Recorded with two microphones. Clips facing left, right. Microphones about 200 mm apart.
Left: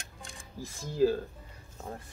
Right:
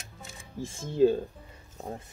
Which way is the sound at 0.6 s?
25° right (ahead or behind).